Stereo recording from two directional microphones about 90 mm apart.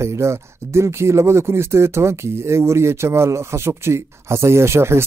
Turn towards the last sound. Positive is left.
turn(degrees=-30)  # may be behind; listen again after turning